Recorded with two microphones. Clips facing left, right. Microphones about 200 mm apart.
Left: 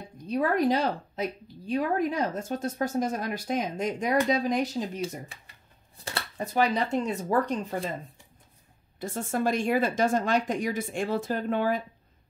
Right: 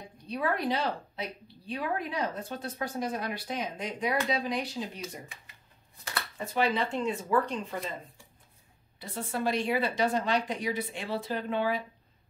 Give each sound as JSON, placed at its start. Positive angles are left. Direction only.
{"t": 0.3, "sound": "a woman's voice", "side_deg": 45}
{"t": 5.0, "sound": "speech", "side_deg": 35}
{"t": 9.0, "sound": "a woman's voice", "side_deg": 45}